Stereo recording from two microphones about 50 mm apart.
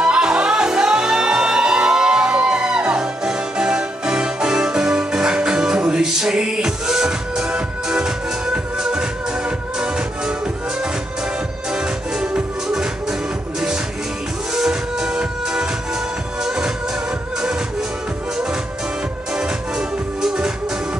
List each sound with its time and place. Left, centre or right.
0.0 s music: centre
11.7 s music: centre
14.5 s music: centre
20.2 s music: centre